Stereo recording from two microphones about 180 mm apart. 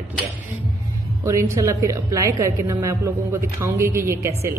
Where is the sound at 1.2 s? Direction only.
15° right (ahead or behind).